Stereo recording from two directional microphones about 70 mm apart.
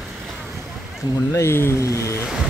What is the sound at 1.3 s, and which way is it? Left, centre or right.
Speech, left.